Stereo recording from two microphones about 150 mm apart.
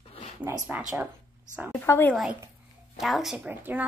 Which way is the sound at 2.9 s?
Centre (ahead or behind).